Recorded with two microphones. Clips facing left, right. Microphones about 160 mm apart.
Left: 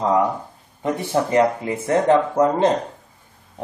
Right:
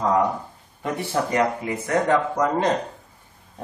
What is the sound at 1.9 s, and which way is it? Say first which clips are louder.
Speech: left 4 dB; 25° left (ahead or behind).